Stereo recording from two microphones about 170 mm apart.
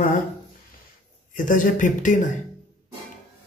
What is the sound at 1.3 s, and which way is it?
Speech, 50° left (ahead or behind).